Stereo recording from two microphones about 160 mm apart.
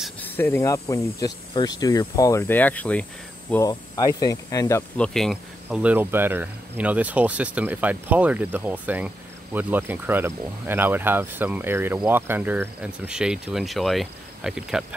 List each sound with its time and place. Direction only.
0.2 s speech: 15° left (ahead or behind)
3.6 s speech: 20° left (ahead or behind)
4.9 s speech: 5° left (ahead or behind)